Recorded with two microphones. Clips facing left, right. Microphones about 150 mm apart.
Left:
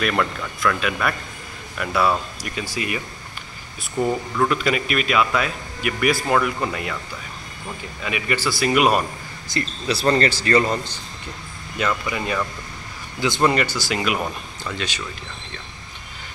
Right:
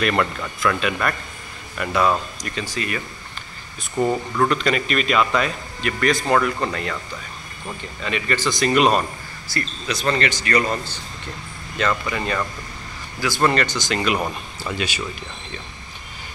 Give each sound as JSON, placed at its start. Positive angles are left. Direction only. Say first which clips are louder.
{"t": 0.0, "sound": "speech", "louder": "right 1 dB", "side_deg": -5}
{"t": 4.0, "sound": "speech", "louder": "right 1 dB", "side_deg": 0}
{"t": 8.0, "sound": "speech", "louder": "right 1 dB", "side_deg": 10}
{"t": 9.5, "sound": "speech", "louder": "left 3 dB", "side_deg": 20}
{"t": 9.9, "sound": "speech", "louder": "left 3 dB", "side_deg": 35}
{"t": 10.4, "sound": "speech", "louder": "left 2 dB", "side_deg": 25}
{"t": 11.8, "sound": "speech", "louder": "right 1 dB", "side_deg": 5}
{"t": 13.2, "sound": "speech", "louder": "left 1 dB", "side_deg": 20}
{"t": 14.2, "sound": "speech", "louder": "right 1 dB", "side_deg": -10}